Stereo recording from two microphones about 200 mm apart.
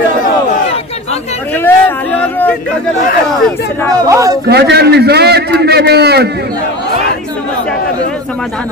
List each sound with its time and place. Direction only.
1.6 s a sound: 10° left (ahead or behind)
4.1 s a man's voice: 15° right (ahead or behind)
4.5 s a man's voice: 55° right (ahead or behind)